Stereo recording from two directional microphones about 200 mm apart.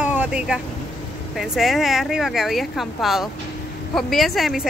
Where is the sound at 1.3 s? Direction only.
Centre (ahead or behind).